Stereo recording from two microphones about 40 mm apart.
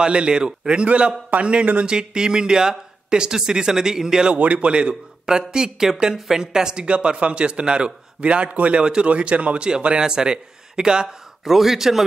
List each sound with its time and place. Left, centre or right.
0.0 s a man's voice: right
4.3 s a man's voice: right
5.5 s a man's voice: centre
6.9 s a man's voice: right
11.4 s speech: centre